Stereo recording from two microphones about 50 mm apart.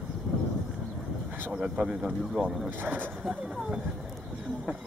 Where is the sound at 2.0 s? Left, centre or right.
Centre.